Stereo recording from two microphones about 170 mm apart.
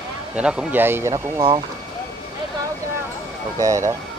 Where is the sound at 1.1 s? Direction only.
30° right (ahead or behind).